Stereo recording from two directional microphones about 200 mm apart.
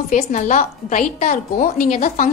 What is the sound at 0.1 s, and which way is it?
A woman's voice, 40° left (ahead or behind).